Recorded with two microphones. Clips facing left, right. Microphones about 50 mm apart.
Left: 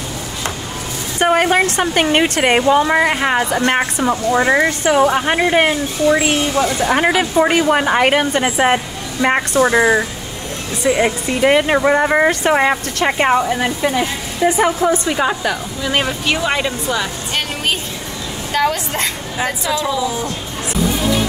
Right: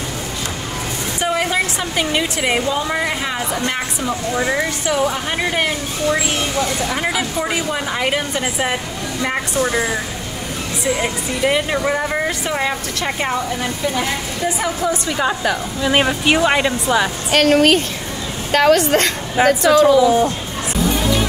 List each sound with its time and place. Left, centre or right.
1.2 s speech: left
6.9 s a woman's voice: left
15.1 s a woman's voice: centre
15.8 s speech: centre
17.3 s a woman's voice: right